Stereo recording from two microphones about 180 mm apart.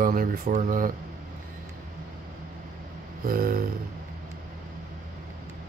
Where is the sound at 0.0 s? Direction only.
50° right (ahead or behind).